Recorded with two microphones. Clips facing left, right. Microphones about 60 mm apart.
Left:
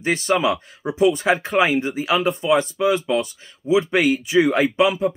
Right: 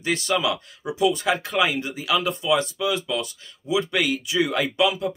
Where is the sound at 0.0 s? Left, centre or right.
Left.